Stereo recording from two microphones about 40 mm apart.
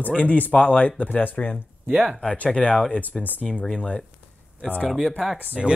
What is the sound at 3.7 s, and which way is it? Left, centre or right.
Speech, left.